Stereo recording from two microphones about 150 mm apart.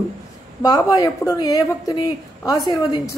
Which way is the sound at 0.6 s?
25° left (ahead or behind).